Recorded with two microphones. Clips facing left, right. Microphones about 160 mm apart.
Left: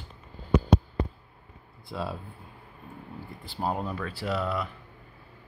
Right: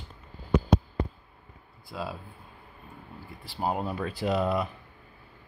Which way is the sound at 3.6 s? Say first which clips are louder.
Right 1 dB; 15° right (ahead or behind).